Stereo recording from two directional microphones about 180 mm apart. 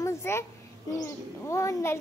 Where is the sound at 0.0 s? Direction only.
15° left (ahead or behind).